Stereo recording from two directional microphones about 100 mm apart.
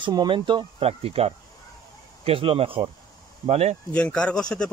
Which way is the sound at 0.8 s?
80° right.